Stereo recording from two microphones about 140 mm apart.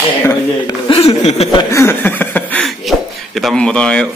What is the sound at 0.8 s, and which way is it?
Chuckle, 40° left (ahead or behind).